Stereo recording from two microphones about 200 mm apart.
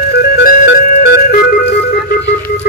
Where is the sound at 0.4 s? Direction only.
45° left (ahead or behind).